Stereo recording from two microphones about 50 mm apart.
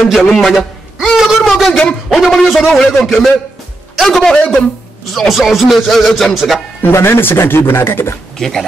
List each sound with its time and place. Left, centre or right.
0.0 s speech: centre
1.7 s speech: centre
2.0 s a man's voice: centre
5.3 s speech: centre
6.9 s speech: left
8.4 s a man's voice: centre